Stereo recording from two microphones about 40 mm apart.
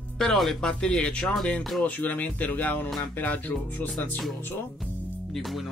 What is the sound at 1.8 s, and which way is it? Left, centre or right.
Speech, left.